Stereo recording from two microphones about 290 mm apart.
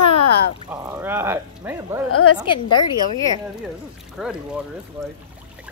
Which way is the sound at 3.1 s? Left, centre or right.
Centre.